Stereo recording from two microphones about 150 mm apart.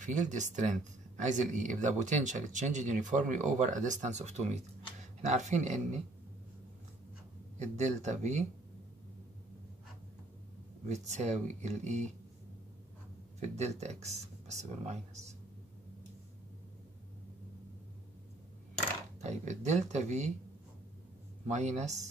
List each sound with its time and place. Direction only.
0.0 s speech: 55° right (ahead or behind)
7.5 s speech: 50° right (ahead or behind)
10.9 s speech: 50° right (ahead or behind)
13.4 s speech: 50° right (ahead or behind)
19.2 s speech: 50° right (ahead or behind)
21.5 s speech: 50° right (ahead or behind)